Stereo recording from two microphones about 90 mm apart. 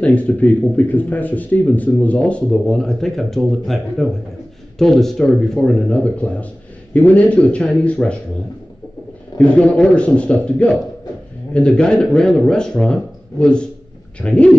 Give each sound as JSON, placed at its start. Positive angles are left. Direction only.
{"t": 0.0, "sound": "speech", "side_deg": 15}
{"t": 9.4, "sound": "speech", "side_deg": 15}